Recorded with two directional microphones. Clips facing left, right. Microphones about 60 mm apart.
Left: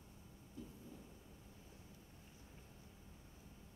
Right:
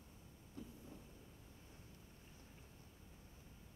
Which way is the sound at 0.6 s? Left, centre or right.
Right.